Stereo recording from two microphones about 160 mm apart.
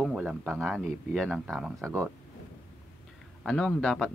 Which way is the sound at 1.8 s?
15° right (ahead or behind).